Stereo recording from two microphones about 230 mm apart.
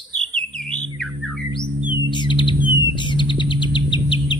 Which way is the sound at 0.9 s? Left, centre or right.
Centre.